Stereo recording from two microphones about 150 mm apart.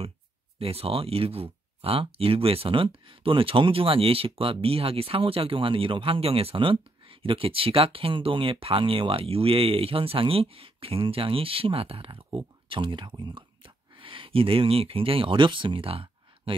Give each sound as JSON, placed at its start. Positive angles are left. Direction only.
{"t": 0.6, "sound": "speech", "side_deg": -40}